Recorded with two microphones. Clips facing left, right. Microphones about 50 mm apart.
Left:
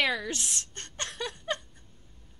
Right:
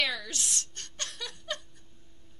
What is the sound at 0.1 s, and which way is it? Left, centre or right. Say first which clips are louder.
Speech: left 5 dB; left.